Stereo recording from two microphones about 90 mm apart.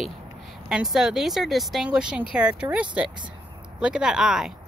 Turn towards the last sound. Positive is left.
turn(degrees=-5)  # may be behind; listen again after turning